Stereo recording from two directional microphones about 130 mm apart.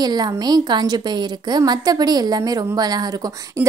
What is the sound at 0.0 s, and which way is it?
A woman's voice, 30° right (ahead or behind).